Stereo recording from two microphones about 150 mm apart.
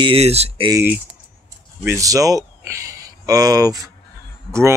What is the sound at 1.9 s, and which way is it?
Speech, 20° right (ahead or behind).